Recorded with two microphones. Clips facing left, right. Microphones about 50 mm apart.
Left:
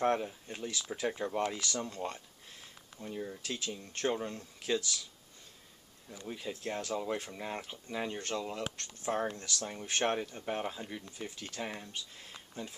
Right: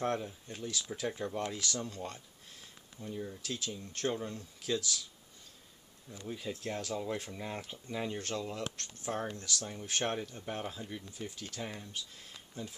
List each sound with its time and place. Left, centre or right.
0.0 s speech: left
6.0 s speech: centre